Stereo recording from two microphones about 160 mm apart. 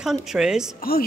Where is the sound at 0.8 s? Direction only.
70° left (ahead or behind).